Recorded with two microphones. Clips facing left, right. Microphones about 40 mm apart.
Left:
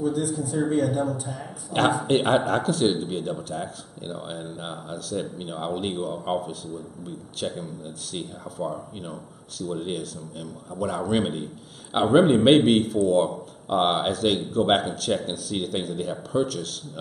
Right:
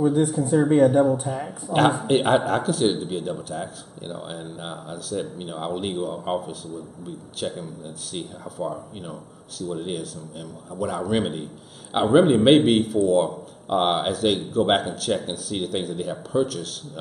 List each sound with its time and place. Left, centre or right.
0.0 s a man's voice: right
1.7 s speech: centre